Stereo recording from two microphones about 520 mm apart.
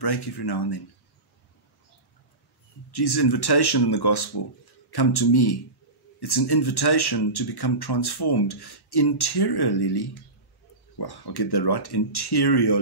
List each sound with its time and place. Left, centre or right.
0.0 s speech: left
2.9 s speech: left